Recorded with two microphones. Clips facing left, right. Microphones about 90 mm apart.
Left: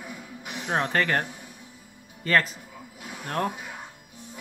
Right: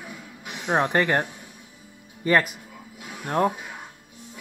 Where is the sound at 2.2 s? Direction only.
15° right (ahead or behind).